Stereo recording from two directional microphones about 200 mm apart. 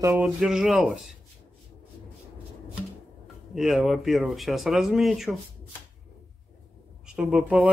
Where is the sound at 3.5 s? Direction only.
Centre (ahead or behind).